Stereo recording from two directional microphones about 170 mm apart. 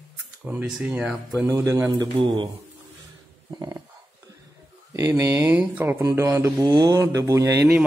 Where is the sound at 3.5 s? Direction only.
25° right (ahead or behind).